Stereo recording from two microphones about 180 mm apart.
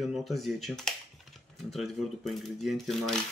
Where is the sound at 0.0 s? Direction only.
Centre (ahead or behind).